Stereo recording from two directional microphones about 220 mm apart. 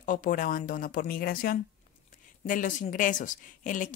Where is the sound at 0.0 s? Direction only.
35° left (ahead or behind).